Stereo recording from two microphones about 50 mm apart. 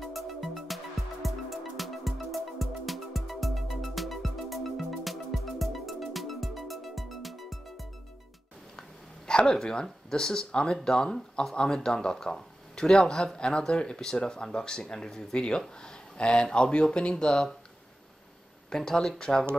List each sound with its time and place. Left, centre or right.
0.0 s music: centre
8.7 s speech: centre
18.7 s speech: centre